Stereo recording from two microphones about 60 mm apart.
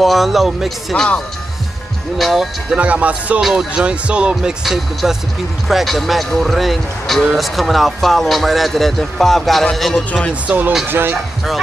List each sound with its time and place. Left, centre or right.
0.0 s speech: centre
0.9 s speech: centre
2.1 s speech: centre
2.7 s speech: right
3.3 s speech: centre
3.7 s speech: centre
4.6 s speech: centre
10.9 s speech: right